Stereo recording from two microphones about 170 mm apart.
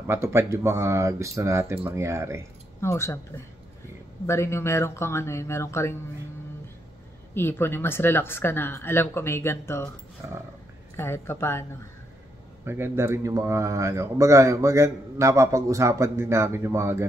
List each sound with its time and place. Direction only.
0.0 s a man's voice: 15° right (ahead or behind)
2.8 s speech: 15° left (ahead or behind)
4.3 s speech: 15° left (ahead or behind)
7.3 s speech: 15° left (ahead or behind)
10.2 s a man's voice: 15° right (ahead or behind)
11.0 s speech: 15° left (ahead or behind)
12.6 s a man's voice: 15° right (ahead or behind)